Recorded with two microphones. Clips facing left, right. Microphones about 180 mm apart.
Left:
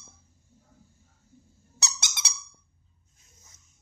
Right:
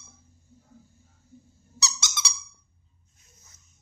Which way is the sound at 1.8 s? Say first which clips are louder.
Right 4 dB; 60° left (ahead or behind).